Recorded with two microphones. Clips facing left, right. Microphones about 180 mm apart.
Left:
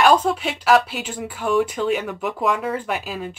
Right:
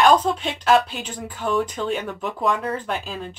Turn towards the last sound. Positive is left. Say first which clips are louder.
# left 2 dB
turn(degrees=5)  # may be behind; listen again after turning